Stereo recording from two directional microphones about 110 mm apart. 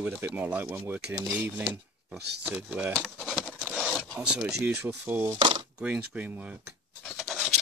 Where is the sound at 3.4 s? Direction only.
10° right (ahead or behind).